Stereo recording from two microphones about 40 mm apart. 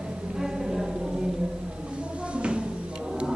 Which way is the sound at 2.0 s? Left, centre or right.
Right.